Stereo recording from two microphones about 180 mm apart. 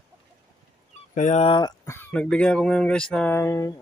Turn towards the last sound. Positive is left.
turn(degrees=15)  # may be behind; listen again after turning